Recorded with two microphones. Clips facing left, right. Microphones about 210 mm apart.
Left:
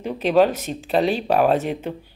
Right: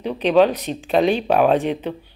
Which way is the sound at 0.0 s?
10° left (ahead or behind).